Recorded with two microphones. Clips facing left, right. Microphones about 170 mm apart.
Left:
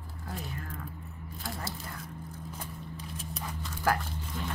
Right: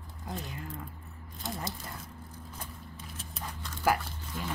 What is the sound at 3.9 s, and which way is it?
Speech, 10° right (ahead or behind).